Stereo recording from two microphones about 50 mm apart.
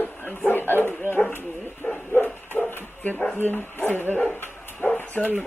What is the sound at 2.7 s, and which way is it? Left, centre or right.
Bow-wow, left.